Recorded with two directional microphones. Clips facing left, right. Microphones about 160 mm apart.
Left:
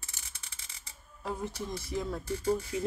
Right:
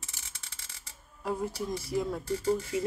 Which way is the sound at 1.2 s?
5° right (ahead or behind).